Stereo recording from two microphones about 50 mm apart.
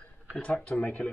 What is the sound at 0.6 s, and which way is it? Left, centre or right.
Speech, left.